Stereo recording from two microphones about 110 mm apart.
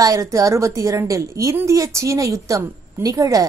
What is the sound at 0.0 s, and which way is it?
A woman's voice, 30° right (ahead or behind).